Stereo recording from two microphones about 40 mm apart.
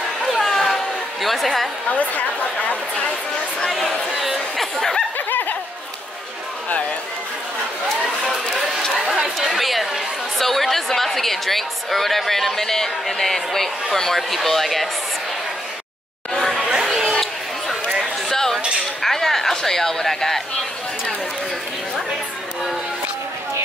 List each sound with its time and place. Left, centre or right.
0.3 s a sound: centre
1.9 s a woman's voice: left
4.2 s chatter: centre
5.3 s a sound: left
8.9 s speech: centre
16.3 s chatter: centre
16.6 s chatter: centre
18.3 s dishes: centre
19.0 s a sound: centre